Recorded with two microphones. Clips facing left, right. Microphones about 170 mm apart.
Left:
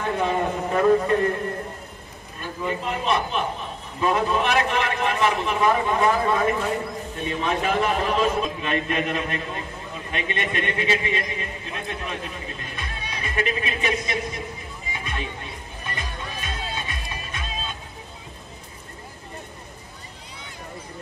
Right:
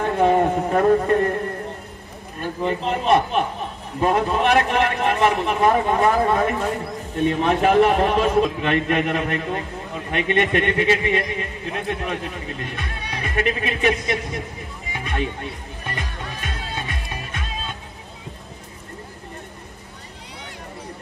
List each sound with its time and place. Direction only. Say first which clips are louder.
0.0 s a man's voice: right 6 dB; 50° right (ahead or behind)
2.9 s a man's voice: right 7 dB; 50° right (ahead or behind)
14.9 s music: right 6 dB; 60° right (ahead or behind)